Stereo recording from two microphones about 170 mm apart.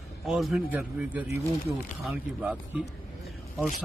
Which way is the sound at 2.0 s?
5° right (ahead or behind).